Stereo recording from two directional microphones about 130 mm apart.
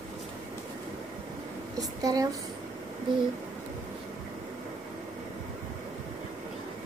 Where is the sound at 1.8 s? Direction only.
30° right (ahead or behind).